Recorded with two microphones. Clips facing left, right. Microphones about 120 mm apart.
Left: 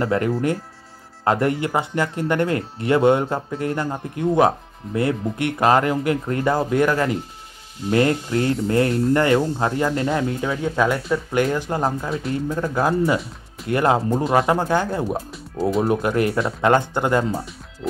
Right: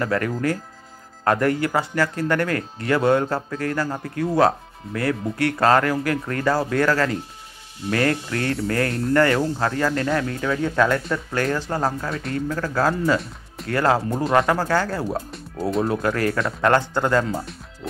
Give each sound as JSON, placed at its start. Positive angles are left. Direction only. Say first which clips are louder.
{"t": 0.0, "sound": "speech", "louder": "left 2 dB", "side_deg": 20}